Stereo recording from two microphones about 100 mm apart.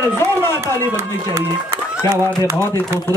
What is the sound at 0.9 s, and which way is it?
Speech, 30° right (ahead or behind).